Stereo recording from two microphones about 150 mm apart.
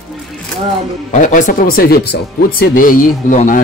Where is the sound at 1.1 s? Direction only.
55° left (ahead or behind).